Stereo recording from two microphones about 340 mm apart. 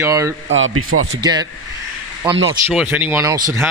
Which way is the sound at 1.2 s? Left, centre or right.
Centre.